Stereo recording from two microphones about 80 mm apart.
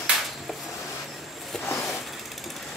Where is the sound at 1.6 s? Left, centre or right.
Left.